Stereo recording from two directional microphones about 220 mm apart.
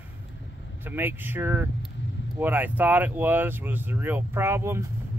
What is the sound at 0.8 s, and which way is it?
Speech, 10° right (ahead or behind).